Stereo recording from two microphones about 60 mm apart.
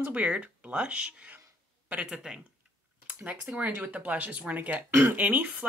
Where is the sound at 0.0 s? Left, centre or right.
Right.